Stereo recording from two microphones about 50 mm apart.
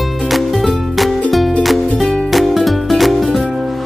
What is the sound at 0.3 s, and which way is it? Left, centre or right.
Music, centre.